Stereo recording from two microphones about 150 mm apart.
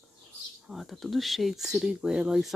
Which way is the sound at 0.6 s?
Centre (ahead or behind).